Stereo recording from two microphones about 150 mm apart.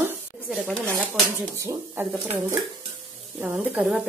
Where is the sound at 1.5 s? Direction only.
15° right (ahead or behind).